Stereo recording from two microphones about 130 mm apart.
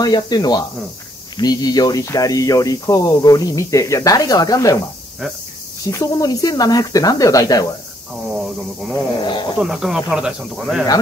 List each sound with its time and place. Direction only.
0.0 s speech: 30° left (ahead or behind)
5.9 s speech: 25° left (ahead or behind)
9.2 s speech: 35° left (ahead or behind)
9.6 s speech: 5° right (ahead or behind)